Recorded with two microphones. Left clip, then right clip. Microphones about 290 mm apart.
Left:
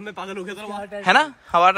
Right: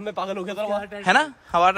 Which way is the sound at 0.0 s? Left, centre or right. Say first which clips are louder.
Right 4 dB; right.